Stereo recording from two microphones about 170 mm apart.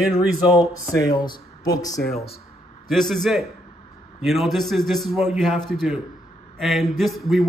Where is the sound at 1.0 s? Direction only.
20° left (ahead or behind).